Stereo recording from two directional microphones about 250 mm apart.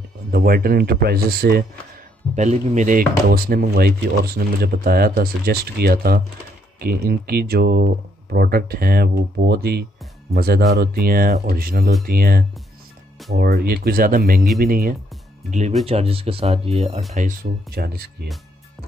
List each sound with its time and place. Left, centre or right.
0.3 s speech: right
2.3 s speech: right
15.8 s speech: right